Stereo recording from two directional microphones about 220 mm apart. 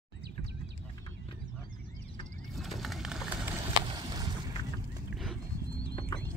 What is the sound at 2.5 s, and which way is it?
Bird, centre (ahead or behind).